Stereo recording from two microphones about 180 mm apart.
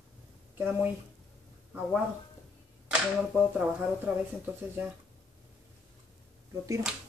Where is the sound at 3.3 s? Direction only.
10° right (ahead or behind).